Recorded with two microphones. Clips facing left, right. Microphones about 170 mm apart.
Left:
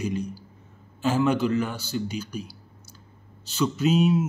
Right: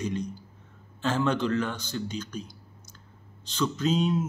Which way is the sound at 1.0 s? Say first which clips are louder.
Left 4 dB; 10° left (ahead or behind).